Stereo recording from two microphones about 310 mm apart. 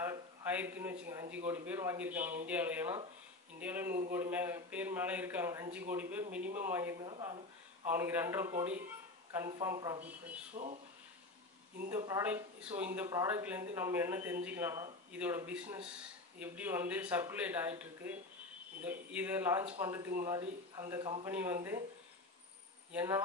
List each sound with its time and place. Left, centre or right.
0.0 s a sound: centre
1.3 s speech: centre
10.5 s speech: right
12.0 s speech: centre
22.9 s speech: centre